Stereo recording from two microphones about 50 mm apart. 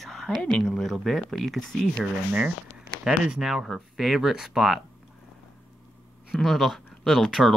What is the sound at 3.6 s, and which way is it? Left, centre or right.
Speech, centre.